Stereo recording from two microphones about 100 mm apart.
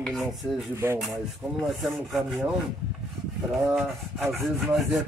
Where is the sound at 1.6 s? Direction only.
Centre (ahead or behind).